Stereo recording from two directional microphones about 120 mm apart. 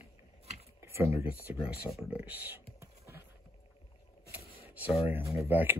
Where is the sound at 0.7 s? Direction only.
20° right (ahead or behind).